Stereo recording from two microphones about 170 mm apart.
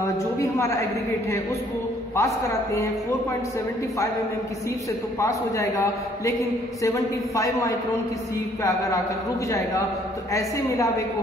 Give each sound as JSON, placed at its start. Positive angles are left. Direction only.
{"t": 0.0, "sound": "a man's voice", "side_deg": 15}
{"t": 2.1, "sound": "a man's voice", "side_deg": 15}
{"t": 5.2, "sound": "a man's voice", "side_deg": 15}